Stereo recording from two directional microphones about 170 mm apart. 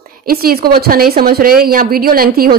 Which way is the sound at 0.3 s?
60° right (ahead or behind).